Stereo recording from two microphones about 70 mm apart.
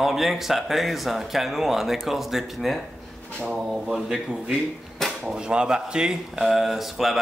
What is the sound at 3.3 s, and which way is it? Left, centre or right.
Drawer open or close, centre.